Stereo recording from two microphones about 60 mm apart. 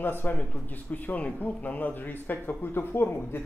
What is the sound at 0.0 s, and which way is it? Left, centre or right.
A man's voice, left.